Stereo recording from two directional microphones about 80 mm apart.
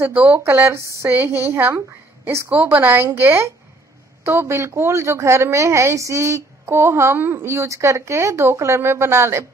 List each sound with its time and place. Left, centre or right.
0.0 s speech: right
1.0 s speech: right